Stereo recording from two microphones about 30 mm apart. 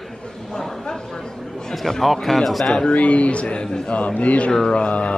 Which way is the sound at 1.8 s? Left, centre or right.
Centre.